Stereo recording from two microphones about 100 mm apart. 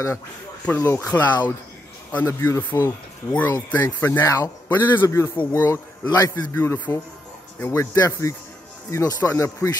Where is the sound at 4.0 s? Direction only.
20° left (ahead or behind).